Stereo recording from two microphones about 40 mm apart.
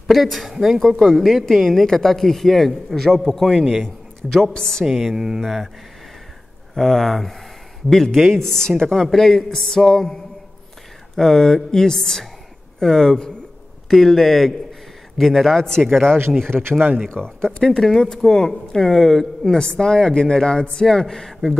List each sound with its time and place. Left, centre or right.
0.0 s a man's voice: centre
5.1 s speech: centre
5.4 s speech: centre
6.7 s speech: centre